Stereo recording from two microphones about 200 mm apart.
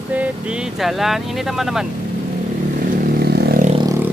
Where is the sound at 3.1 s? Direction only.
50° right (ahead or behind).